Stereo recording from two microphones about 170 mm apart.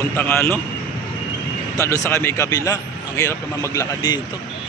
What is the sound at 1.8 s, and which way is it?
A man's voice, 15° left (ahead or behind).